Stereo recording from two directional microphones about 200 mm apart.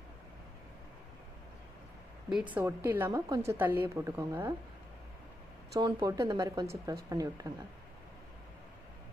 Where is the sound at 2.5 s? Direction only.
10° right (ahead or behind).